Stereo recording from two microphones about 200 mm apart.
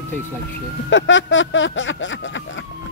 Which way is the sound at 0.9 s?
70° left (ahead or behind).